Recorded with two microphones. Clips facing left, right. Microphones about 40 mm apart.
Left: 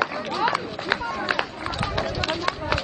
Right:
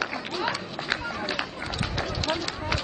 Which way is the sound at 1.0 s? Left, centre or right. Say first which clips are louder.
Left 4 dB; centre.